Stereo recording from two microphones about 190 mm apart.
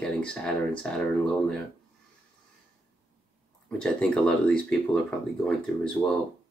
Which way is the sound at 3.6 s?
5° left (ahead or behind).